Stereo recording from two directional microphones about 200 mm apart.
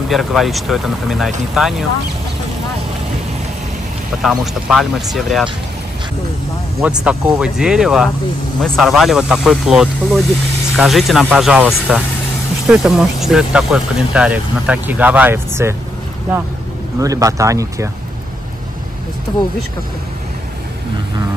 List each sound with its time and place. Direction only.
0.1 s speech: centre (ahead or behind)
4.2 s speech: centre (ahead or behind)
6.8 s speech: 5° right (ahead or behind)
17.0 s speech: 15° right (ahead or behind)